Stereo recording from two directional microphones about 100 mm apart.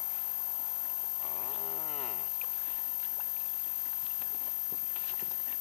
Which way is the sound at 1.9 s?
10° left (ahead or behind).